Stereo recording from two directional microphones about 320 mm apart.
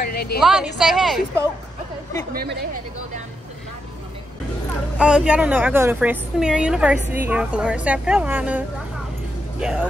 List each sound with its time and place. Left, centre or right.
0.0 s a sound: left
0.4 s speech: centre
2.3 s a woman's voice: right
4.9 s speech: centre